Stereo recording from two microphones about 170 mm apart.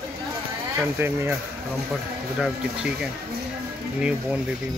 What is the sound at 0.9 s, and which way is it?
Speech, 15° right (ahead or behind).